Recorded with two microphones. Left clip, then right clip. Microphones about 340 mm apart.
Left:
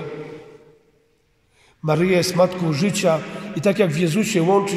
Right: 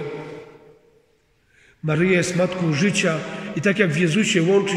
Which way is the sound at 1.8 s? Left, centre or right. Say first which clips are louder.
Left 1 dB; centre.